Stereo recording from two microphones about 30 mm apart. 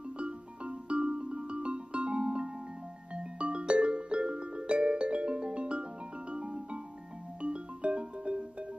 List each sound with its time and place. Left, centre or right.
0.2 s music: right